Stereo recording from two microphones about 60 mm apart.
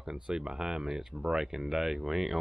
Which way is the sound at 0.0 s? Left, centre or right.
Centre.